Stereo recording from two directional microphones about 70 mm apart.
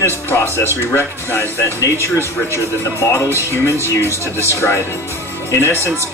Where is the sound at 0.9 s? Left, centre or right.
Left.